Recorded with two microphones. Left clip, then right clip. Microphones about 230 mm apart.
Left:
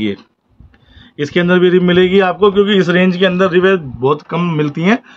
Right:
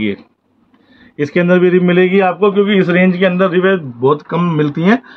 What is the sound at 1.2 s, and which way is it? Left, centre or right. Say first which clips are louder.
A man's voice: even; centre.